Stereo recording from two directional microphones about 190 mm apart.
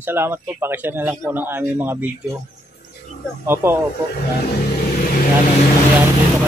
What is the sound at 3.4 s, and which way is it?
Speech, 10° right (ahead or behind).